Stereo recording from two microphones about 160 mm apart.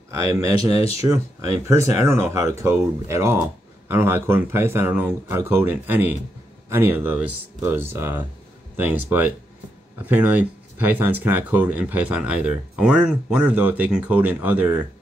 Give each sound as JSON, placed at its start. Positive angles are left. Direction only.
{"t": 0.3, "sound": "speech", "side_deg": -20}
{"t": 0.7, "sound": "speech", "side_deg": 40}
{"t": 1.0, "sound": "speech", "side_deg": -20}